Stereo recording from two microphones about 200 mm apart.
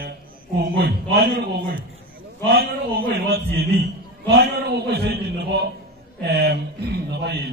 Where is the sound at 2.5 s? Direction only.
50° right (ahead or behind).